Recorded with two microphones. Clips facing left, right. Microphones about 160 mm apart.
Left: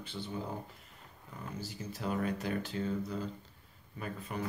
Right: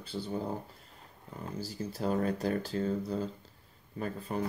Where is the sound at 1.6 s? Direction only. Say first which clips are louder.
Right 5 dB; 35° right (ahead or behind).